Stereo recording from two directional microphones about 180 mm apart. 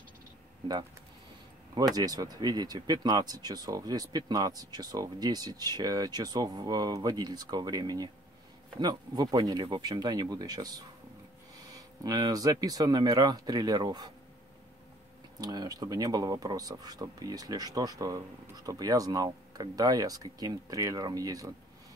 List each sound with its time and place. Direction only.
2.0 s speech: 20° right (ahead or behind)
12.0 s speech: 20° right (ahead or behind)
15.4 s speech: 20° right (ahead or behind)